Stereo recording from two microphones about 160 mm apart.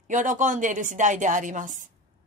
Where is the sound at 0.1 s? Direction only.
55° right (ahead or behind).